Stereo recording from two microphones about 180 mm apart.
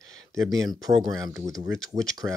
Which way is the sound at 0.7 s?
20° right (ahead or behind).